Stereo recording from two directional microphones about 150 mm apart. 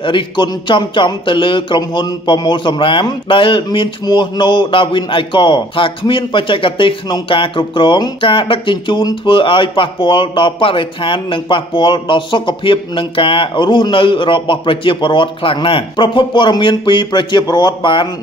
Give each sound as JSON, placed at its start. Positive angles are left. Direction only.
{"t": 0.0, "sound": "a man's voice", "side_deg": 35}